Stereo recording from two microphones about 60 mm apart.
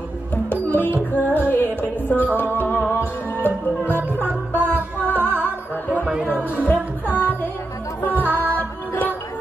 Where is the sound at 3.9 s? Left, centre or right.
Right.